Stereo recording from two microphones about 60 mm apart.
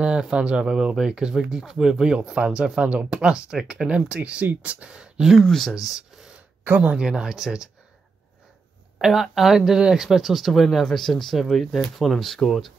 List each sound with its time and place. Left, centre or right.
0.0 s speech: centre
5.4 s speech: centre
9.0 s speech: centre